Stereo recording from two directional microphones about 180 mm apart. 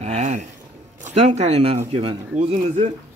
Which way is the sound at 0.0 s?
40° right (ahead or behind).